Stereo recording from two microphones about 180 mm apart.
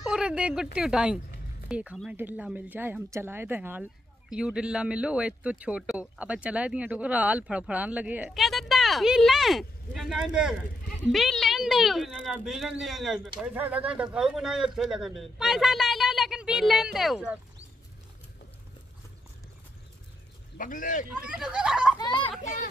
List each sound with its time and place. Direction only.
0.0 s speech: 5° right (ahead or behind)
20.5 s a man's voice: 45° left (ahead or behind)
21.3 s speech: 5° right (ahead or behind)
21.9 s children playing: 25° left (ahead or behind)
22.4 s a child's voice: 45° left (ahead or behind)